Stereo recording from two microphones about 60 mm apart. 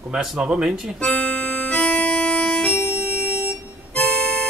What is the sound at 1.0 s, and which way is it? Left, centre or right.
Music, centre.